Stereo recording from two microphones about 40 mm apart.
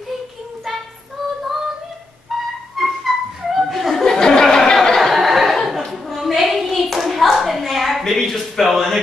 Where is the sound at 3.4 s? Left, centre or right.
Centre.